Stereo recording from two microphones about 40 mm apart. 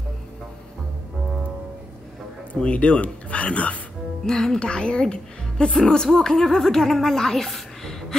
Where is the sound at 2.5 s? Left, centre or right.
Left.